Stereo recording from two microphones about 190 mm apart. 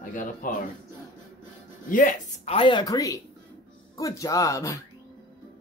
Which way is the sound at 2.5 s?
25° left (ahead or behind).